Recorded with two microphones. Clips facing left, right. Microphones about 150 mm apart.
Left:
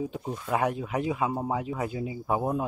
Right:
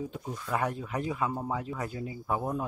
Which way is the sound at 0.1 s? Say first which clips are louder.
Left 4 dB; 25° left (ahead or behind).